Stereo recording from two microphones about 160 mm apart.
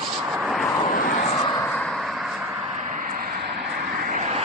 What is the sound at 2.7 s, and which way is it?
Vehicle, 50° right (ahead or behind).